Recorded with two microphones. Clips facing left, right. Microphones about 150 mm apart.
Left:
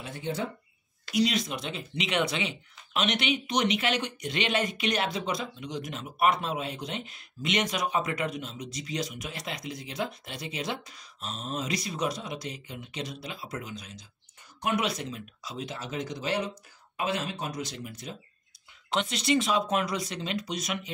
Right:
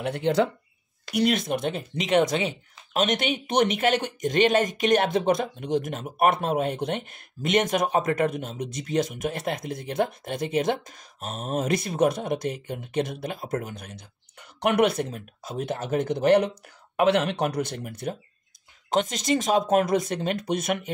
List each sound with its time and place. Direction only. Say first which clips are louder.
0.0 s speech: right 10 dB; 75° right (ahead or behind)
1.1 s speech: right 4 dB; 55° right (ahead or behind)
18.9 s speech: right 4 dB; 45° right (ahead or behind)